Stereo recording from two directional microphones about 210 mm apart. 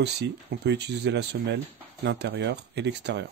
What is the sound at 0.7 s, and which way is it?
Speech, 55° right (ahead or behind).